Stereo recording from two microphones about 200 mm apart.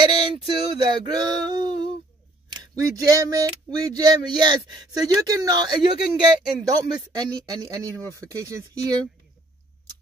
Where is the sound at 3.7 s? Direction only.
20° right (ahead or behind).